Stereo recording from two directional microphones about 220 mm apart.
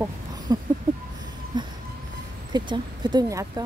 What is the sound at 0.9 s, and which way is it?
Speech, 20° right (ahead or behind).